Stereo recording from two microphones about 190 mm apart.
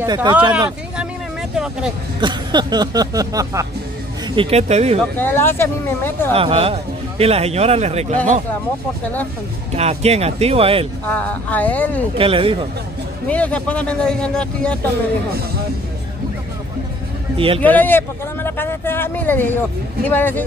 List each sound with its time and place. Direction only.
0.0 s speech: 20° right (ahead or behind)
0.5 s speech: 5° right (ahead or behind)
2.1 s speech: 25° right (ahead or behind)
4.4 s a man's voice: 35° right (ahead or behind)
5.2 s speech: 10° left (ahead or behind)
6.3 s a man's voice: 30° right (ahead or behind)
9.8 s a man's voice: 35° right (ahead or behind)
11.1 s speech: 10° left (ahead or behind)
12.2 s speech: 30° right (ahead or behind)
13.3 s a man's voice: 5° left (ahead or behind)
17.6 s speech: 10° left (ahead or behind)